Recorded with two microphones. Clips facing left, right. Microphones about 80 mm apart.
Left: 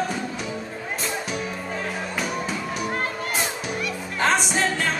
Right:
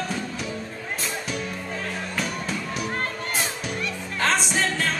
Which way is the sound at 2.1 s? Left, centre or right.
Centre.